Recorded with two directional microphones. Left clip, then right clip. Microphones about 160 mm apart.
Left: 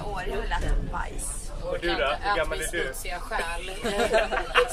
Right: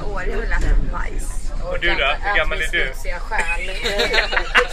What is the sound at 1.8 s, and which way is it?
Speech, 5° left (ahead or behind).